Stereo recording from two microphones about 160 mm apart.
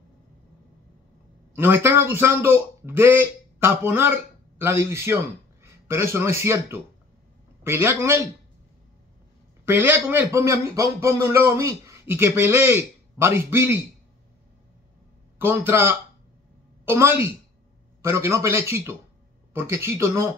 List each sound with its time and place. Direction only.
1.5 s a man's voice: 15° right (ahead or behind)
9.7 s a man's voice: 15° right (ahead or behind)
15.3 s a man's voice: 15° right (ahead or behind)